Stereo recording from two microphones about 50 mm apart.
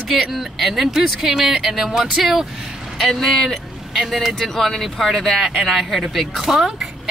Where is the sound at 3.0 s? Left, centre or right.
Centre.